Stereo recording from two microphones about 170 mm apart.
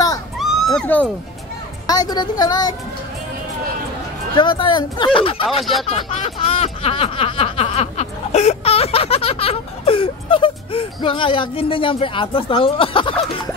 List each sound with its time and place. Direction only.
0.4 s a sound: centre (ahead or behind)
1.9 s speech: 25° left (ahead or behind)
4.4 s speech: 30° left (ahead or behind)